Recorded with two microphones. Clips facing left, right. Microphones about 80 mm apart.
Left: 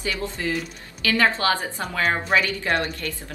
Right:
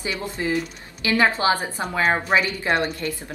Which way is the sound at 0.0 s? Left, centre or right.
Right.